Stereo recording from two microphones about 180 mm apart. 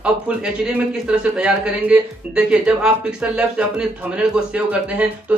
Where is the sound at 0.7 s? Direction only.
5° right (ahead or behind).